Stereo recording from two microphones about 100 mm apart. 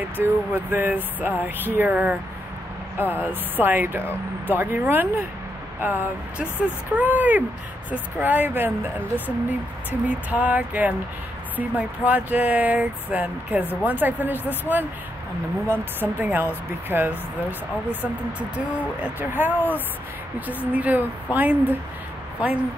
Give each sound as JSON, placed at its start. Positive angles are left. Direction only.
{"t": 0.0, "sound": "speech", "side_deg": -20}
{"t": 18.9, "sound": "speech", "side_deg": -20}